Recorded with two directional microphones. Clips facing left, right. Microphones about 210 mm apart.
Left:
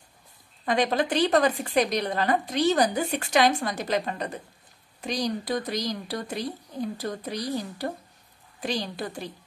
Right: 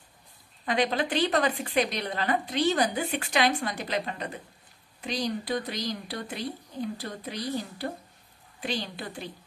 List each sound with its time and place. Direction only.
0.7 s speech: 45° left (ahead or behind)